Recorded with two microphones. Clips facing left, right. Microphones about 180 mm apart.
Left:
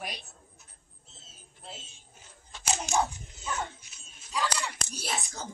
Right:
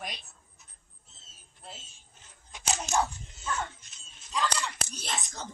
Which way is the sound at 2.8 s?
10° left (ahead or behind).